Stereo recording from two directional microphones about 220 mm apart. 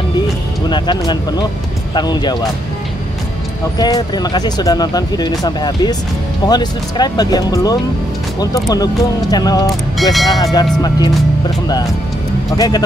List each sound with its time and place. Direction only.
0.7 s speech: 20° left (ahead or behind)
3.7 s speech: 20° left (ahead or behind)
10.1 s speech: centre (ahead or behind)
10.4 s speech: 20° left (ahead or behind)